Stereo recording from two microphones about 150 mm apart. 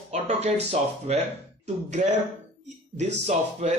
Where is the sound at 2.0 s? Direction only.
55° right (ahead or behind).